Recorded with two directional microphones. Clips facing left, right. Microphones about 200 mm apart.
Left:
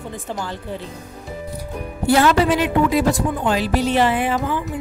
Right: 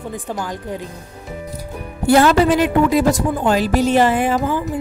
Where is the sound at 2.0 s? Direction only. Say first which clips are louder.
Right 3 dB; 45° right (ahead or behind).